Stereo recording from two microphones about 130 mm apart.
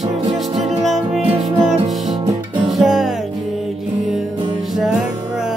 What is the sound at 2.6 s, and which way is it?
Music, centre (ahead or behind).